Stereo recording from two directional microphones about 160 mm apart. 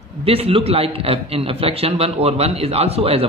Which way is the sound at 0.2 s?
35° right (ahead or behind).